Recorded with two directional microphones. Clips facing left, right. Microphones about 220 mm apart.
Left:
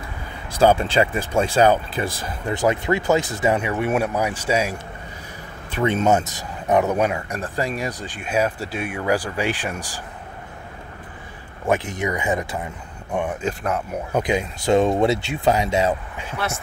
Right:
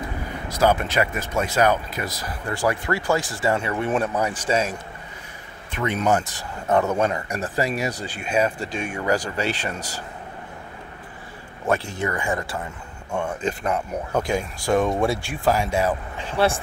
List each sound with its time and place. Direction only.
0.5 s speech: 30° left (ahead or behind); by 4.7 s 10° left (ahead or behind)
5.7 s speech: 30° left (ahead or behind)
7.2 s speech: centre (ahead or behind)
11.6 s speech: 15° left (ahead or behind)
13.4 s speech: 5° left (ahead or behind)
14.1 s speech: 20° left (ahead or behind)